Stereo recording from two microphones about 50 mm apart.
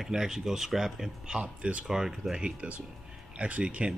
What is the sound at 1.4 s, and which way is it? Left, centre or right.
Speech, right.